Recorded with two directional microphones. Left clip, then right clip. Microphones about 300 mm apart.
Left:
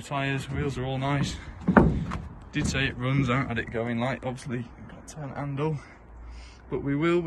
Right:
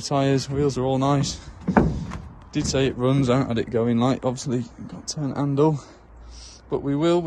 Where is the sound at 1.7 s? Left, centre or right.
Centre.